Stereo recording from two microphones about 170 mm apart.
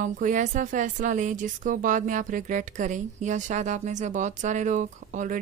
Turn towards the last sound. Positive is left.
turn(degrees=-50)  # may be behind; listen again after turning